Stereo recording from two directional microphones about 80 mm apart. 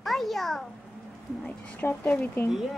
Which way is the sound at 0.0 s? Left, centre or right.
Centre.